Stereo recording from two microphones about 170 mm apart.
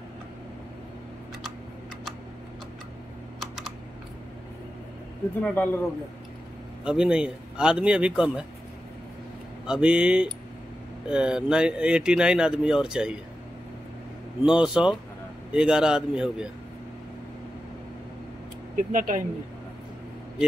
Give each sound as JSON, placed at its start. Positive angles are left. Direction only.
{"t": 3.3, "sound": "computer keyboard", "side_deg": 0}
{"t": 5.4, "sound": "speech", "side_deg": 10}
{"t": 6.8, "sound": "speech", "side_deg": -5}
{"t": 9.7, "sound": "speech", "side_deg": -5}
{"t": 14.4, "sound": "speech", "side_deg": -5}
{"t": 18.8, "sound": "speech", "side_deg": -50}